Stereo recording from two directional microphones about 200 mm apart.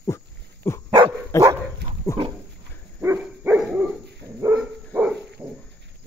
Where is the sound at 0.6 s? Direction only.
15° left (ahead or behind).